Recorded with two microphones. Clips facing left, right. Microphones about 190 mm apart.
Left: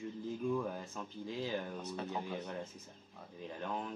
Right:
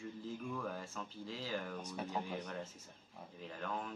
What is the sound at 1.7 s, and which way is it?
Speech, 10° right (ahead or behind).